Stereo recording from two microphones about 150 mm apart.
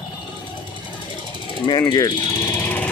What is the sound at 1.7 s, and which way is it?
Speech, 25° left (ahead or behind).